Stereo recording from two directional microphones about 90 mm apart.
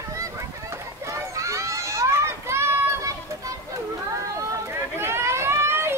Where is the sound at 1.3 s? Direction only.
35° right (ahead or behind).